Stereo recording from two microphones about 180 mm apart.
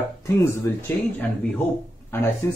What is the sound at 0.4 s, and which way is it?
Speech, 15° left (ahead or behind).